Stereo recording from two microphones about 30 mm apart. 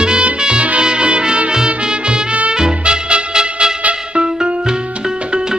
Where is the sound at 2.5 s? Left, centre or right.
Right.